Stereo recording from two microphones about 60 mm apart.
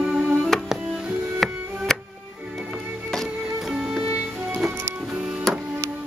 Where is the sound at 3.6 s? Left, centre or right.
Centre.